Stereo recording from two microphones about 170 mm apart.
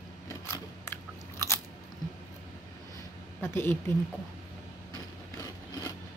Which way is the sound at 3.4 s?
15° left (ahead or behind).